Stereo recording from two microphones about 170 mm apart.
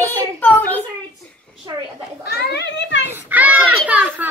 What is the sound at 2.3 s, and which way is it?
Speech, 75° left (ahead or behind).